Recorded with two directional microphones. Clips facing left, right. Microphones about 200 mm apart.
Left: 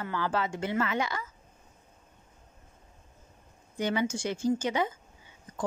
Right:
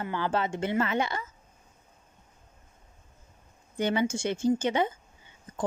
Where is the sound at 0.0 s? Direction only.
25° right (ahead or behind).